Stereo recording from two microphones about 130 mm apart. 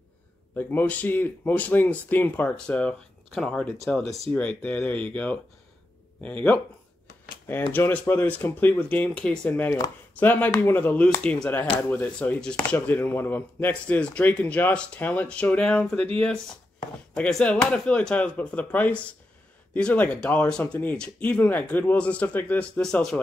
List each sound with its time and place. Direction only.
0.6 s speech: 15° left (ahead or behind)
7.7 s speech: 15° left (ahead or behind)
17.1 s speech: 5° left (ahead or behind)